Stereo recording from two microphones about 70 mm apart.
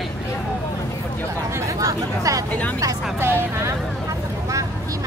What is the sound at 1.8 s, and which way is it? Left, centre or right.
Speech, right.